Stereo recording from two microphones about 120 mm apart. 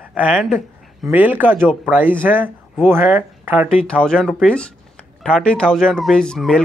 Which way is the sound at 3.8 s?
5° left (ahead or behind).